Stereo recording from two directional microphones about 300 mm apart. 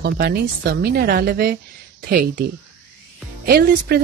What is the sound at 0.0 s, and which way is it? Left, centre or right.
Speech, right.